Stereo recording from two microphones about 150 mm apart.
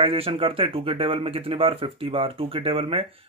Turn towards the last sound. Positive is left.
turn(degrees=-40)  # may be behind; listen again after turning